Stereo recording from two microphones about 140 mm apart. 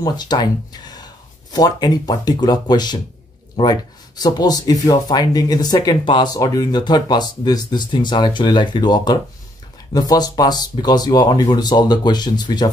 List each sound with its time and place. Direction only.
0.0 s speech: 30° left (ahead or behind)
4.2 s speech: 30° left (ahead or behind)